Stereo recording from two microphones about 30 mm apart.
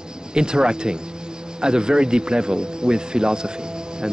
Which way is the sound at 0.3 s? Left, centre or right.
Right.